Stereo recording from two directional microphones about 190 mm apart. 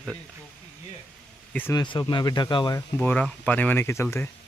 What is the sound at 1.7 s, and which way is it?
Speech, 25° left (ahead or behind).